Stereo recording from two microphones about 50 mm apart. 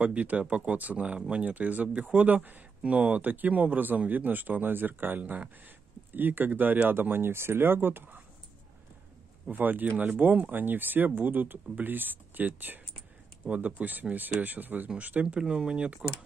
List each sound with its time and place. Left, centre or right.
0.0 s speech: right
9.5 s speech: right
15.2 s speech: centre